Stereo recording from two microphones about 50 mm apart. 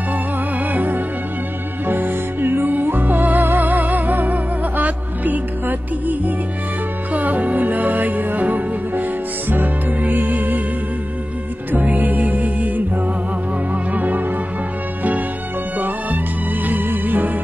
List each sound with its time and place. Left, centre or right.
0.7 s music: right
11.7 s music: right
16.6 s music: right